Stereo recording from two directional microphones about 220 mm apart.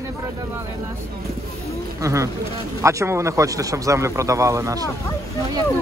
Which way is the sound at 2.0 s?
15° right (ahead or behind).